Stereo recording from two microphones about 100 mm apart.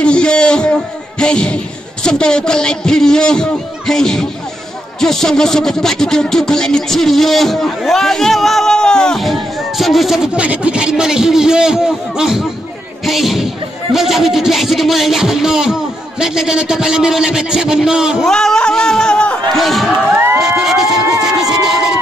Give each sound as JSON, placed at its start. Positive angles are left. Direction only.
{"t": 0.0, "sound": "music", "side_deg": 10}
{"t": 2.0, "sound": "speech", "side_deg": 5}
{"t": 18.3, "sound": "speech", "side_deg": 5}
{"t": 20.1, "sound": "music", "side_deg": -25}
{"t": 20.3, "sound": "a sound", "side_deg": -5}